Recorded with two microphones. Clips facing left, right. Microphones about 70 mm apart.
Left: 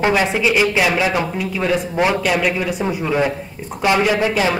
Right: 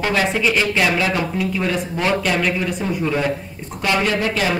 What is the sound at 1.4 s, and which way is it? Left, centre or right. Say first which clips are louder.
A man's voice: left 2 dB; centre.